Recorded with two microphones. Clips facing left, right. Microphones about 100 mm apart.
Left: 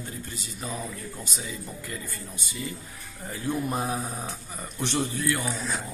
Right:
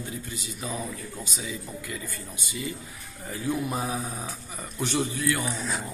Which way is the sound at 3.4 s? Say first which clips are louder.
Even; centre (ahead or behind).